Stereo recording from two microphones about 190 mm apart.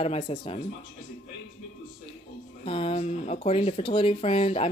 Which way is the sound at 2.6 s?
30° left (ahead or behind).